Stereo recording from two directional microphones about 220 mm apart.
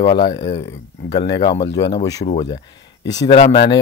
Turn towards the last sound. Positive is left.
turn(degrees=20)  # may be behind; listen again after turning